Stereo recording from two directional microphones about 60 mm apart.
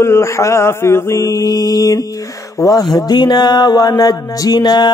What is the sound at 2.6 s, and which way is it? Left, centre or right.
Speech, left.